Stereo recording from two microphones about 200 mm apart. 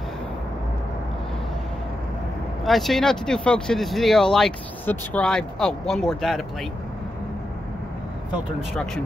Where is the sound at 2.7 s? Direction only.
Centre (ahead or behind).